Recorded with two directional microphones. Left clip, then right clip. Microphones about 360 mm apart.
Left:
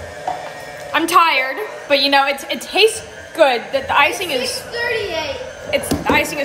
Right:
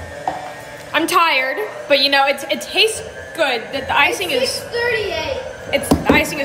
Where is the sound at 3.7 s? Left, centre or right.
Centre.